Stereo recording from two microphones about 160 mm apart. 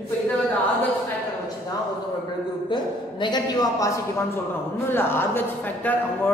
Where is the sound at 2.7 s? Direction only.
30° left (ahead or behind).